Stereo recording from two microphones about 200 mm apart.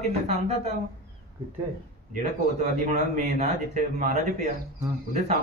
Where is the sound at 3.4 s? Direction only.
35° right (ahead or behind).